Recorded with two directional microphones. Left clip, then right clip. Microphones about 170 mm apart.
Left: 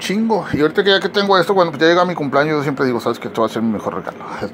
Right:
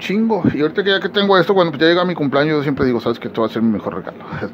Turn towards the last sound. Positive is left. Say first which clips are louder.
# left 2 dB
turn(degrees=-20)  # may be behind; listen again after turning